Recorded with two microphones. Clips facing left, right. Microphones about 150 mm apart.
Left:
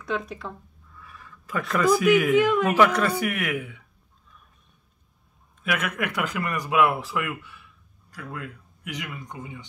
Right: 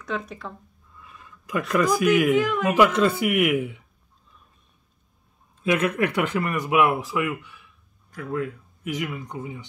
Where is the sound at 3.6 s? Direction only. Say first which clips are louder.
Right 7 dB; 25° right (ahead or behind).